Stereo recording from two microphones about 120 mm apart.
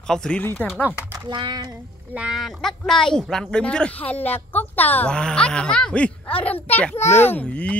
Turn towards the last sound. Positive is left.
turn(degrees=10)  # may be behind; listen again after turning